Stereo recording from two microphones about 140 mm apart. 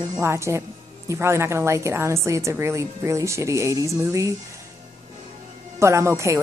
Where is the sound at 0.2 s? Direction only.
20° right (ahead or behind).